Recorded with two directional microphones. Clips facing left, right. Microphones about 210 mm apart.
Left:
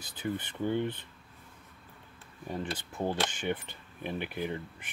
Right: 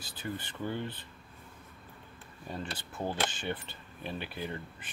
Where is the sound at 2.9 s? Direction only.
10° left (ahead or behind).